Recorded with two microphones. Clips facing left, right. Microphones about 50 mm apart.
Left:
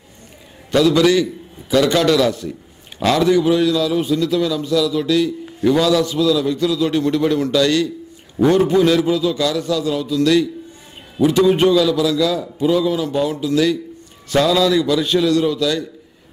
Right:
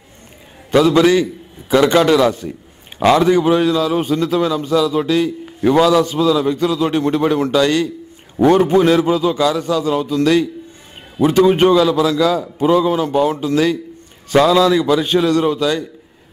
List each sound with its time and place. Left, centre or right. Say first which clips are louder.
0.7 s a man's voice: right 2 dB; right
8.4 s a man's voice: right 2 dB; right